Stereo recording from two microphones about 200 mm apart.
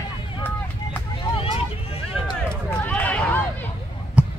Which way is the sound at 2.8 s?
5° left (ahead or behind).